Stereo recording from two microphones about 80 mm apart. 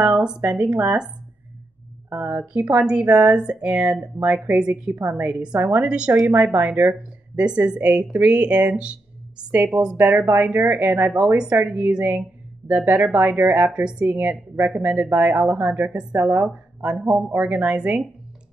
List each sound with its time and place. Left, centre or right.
0.0 s speech: centre
2.5 s speech: centre